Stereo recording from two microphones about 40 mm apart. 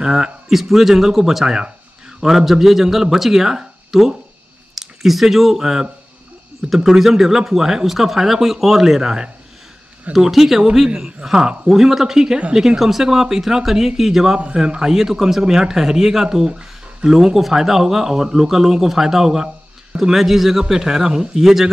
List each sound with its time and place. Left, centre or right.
0.0 s speech: centre
0.5 s speech: centre